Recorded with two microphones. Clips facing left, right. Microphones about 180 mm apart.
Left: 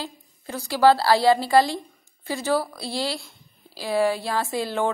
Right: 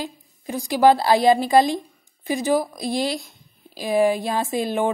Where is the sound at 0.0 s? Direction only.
15° right (ahead or behind).